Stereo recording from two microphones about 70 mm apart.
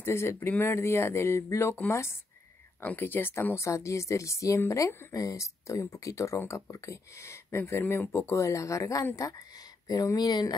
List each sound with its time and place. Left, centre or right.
0.0 s speech: left
2.8 s speech: left
10.1 s speech: left